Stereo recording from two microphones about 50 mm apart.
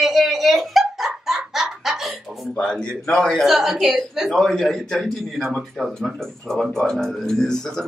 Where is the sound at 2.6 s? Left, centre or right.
Centre.